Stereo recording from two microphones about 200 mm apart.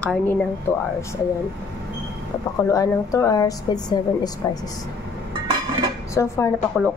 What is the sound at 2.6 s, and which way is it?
A woman's voice, 15° left (ahead or behind).